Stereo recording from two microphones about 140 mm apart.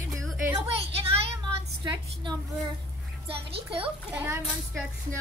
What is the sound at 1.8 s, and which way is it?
A woman's voice, 30° right (ahead or behind).